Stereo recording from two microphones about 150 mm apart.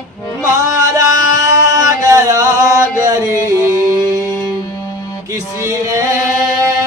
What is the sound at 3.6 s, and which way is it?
Music, 20° left (ahead or behind).